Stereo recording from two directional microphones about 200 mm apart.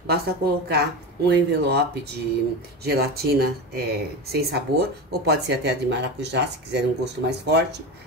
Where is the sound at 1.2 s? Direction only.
55° right (ahead or behind).